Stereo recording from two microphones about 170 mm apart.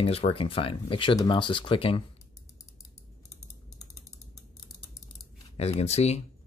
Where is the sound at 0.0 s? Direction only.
35° left (ahead or behind).